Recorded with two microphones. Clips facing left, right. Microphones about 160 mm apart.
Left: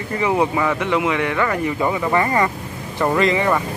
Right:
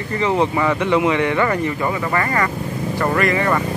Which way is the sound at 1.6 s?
15° left (ahead or behind).